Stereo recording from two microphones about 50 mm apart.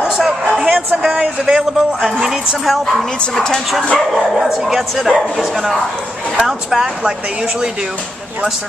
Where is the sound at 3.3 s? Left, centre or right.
Centre.